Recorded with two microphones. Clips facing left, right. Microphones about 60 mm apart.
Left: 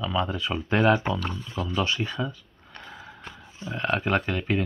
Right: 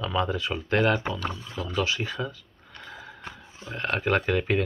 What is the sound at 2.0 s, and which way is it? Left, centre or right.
Speech, centre.